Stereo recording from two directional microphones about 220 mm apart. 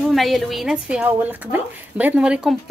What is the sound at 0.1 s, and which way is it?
A woman's voice, centre (ahead or behind).